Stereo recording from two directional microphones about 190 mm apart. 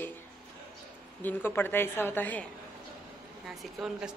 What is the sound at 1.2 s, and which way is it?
A woman's voice, 10° left (ahead or behind).